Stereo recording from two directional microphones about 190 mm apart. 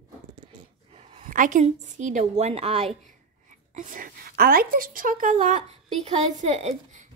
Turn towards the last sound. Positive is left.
turn(degrees=-35)  # may be behind; listen again after turning